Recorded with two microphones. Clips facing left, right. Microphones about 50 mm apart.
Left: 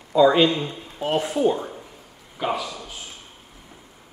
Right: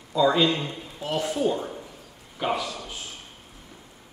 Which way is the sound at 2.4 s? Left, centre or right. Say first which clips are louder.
Left 1 dB; centre.